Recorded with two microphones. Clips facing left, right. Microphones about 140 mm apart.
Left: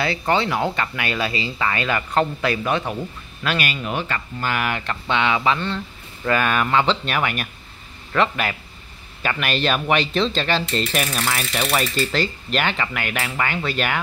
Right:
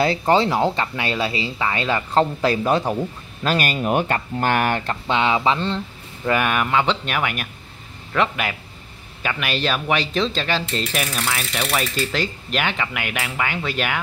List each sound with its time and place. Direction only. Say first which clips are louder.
0.2 s speech: right 3 dB; 35° right (ahead or behind)
6.2 s mechanisms: even; 15° right (ahead or behind)
9.2 s speech: left 1 dB; 5° right (ahead or behind)
11.7 s mechanisms: left 1 dB; 5° right (ahead or behind)